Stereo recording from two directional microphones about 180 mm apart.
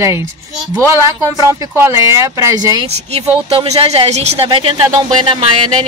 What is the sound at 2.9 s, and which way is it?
Speech, 35° right (ahead or behind).